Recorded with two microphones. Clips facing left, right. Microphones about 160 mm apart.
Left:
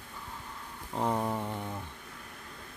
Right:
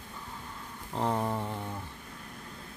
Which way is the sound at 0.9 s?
5° left (ahead or behind).